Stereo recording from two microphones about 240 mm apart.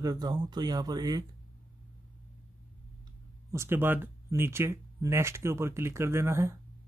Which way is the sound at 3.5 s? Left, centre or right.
Centre.